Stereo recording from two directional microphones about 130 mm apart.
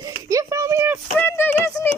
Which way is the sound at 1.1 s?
15° left (ahead or behind).